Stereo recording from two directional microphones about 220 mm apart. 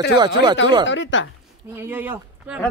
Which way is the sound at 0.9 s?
55° left (ahead or behind).